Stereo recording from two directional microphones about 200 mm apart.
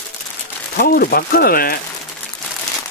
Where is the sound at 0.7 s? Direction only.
50° left (ahead or behind).